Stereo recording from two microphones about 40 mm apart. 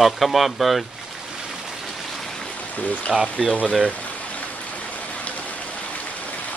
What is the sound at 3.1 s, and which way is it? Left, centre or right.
Speech, centre.